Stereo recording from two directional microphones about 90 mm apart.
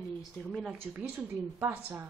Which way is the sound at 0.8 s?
20° right (ahead or behind).